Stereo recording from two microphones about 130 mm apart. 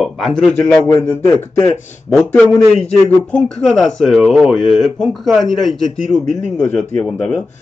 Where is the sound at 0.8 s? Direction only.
30° left (ahead or behind).